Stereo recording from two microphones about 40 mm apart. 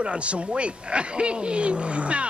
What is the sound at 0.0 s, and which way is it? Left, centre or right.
Speech, right.